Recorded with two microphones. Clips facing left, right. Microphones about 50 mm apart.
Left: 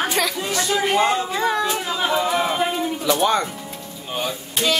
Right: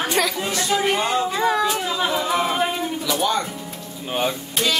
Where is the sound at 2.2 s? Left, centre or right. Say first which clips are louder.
Left 1 dB; centre.